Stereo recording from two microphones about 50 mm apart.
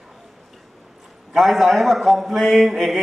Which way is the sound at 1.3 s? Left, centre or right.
Centre.